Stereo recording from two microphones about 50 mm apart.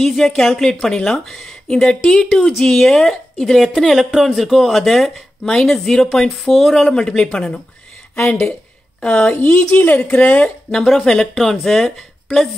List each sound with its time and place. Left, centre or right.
0.0 s speech: centre
9.0 s speech: left
9.8 s speech: left
10.7 s speech: centre